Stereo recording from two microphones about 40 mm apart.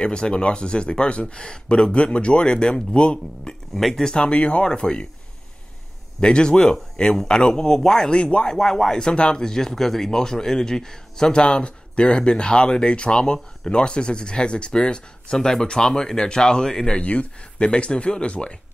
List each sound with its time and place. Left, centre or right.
0.0 s speech: left
3.7 s speech: centre
4.1 s speech: left
6.2 s speech: left
8.1 s speech: left
8.5 s speech: centre
9.0 s speech: left
17.1 s speech: left